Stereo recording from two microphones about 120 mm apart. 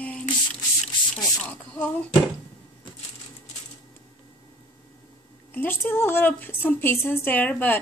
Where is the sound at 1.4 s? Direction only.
10° left (ahead or behind).